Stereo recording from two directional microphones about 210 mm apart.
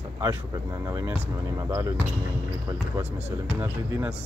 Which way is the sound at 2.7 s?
10° right (ahead or behind).